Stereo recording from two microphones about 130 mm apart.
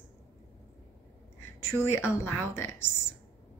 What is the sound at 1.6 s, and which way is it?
Speech, 20° left (ahead or behind).